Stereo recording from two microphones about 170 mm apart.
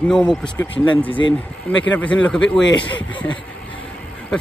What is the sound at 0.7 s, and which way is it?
Speech, 30° left (ahead or behind).